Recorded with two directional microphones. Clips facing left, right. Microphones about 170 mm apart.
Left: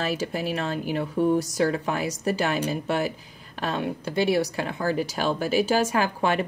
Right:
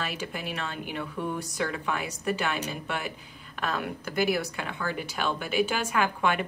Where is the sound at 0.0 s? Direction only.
40° left (ahead or behind).